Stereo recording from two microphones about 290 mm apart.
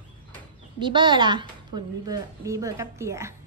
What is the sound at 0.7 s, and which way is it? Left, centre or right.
A woman's voice, centre.